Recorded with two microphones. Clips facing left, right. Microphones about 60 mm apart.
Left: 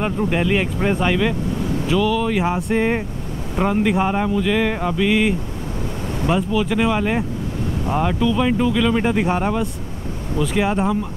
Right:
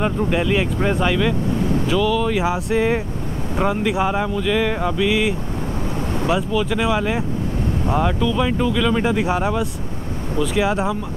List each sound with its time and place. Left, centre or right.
0.0 s speech: centre